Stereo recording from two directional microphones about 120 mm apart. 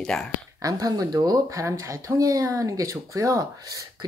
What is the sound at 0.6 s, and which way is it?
Speech, 30° right (ahead or behind).